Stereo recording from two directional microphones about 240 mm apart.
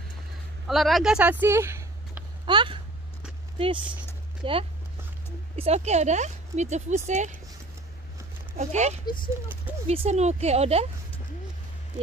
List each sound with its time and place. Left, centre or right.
0.7 s speech: centre; by 7.3 s right
8.5 s speech: right
9.0 s speech: centre
9.8 s speech: right